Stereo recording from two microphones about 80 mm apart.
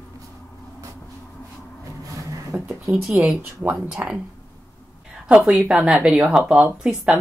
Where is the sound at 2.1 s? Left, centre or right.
Right.